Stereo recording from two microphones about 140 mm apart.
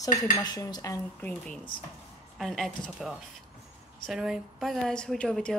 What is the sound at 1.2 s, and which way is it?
A woman's voice, 10° left (ahead or behind).